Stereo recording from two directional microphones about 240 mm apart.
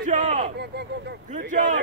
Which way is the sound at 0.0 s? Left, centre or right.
Right.